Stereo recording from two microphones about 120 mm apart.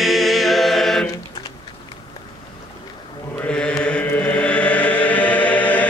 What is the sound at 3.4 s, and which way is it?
Chant, 10° left (ahead or behind).